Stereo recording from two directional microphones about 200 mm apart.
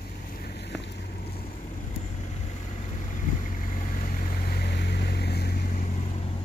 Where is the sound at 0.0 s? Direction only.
50° left (ahead or behind).